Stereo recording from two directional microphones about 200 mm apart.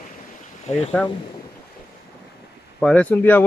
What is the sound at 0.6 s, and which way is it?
Speech, 35° left (ahead or behind).